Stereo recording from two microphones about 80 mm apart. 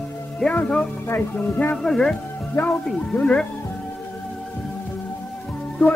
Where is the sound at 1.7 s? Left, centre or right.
Centre.